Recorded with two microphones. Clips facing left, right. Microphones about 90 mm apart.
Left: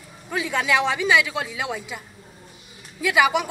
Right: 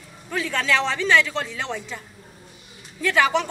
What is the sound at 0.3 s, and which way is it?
Speech, 15° left (ahead or behind).